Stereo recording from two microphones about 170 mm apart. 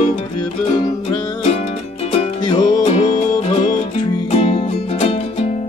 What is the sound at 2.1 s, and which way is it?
Music, 30° left (ahead or behind).